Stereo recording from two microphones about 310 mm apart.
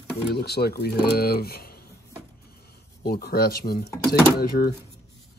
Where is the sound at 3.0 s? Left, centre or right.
Left.